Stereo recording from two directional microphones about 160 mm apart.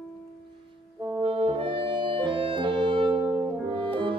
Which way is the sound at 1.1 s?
35° right (ahead or behind).